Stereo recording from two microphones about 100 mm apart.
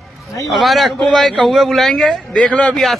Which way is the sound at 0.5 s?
Centre (ahead or behind).